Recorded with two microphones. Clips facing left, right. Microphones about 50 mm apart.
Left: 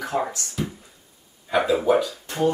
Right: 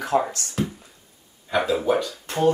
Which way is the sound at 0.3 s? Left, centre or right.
Right.